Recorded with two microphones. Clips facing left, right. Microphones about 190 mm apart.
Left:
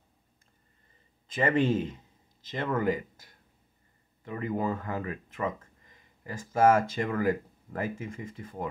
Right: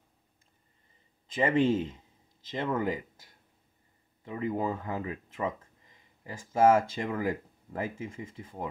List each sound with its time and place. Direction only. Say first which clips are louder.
1.2 s speech: even; 25° right (ahead or behind)
4.2 s speech: even; 20° right (ahead or behind)